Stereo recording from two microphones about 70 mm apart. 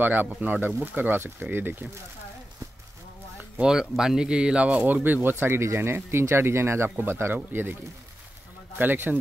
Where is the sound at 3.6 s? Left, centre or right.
Centre; by 7.8 s right.